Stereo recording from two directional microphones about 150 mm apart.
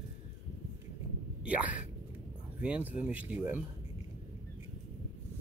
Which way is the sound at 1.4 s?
10° right (ahead or behind).